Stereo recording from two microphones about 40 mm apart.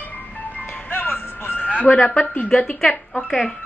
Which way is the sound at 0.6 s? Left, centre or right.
Left.